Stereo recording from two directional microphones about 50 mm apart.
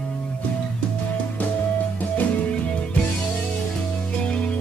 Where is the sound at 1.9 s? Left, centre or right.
Left.